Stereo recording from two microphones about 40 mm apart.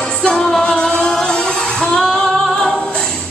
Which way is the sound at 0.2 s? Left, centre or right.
Centre.